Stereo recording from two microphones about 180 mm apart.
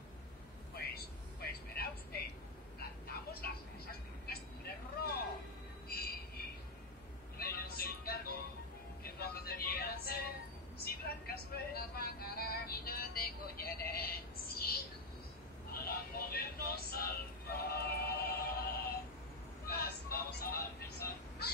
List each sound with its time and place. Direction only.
0.7 s vehicle: 60° left (ahead or behind)
4.3 s vehicle: 55° left (ahead or behind)
5.9 s train: 60° left (ahead or behind)
7.3 s music: 55° left (ahead or behind)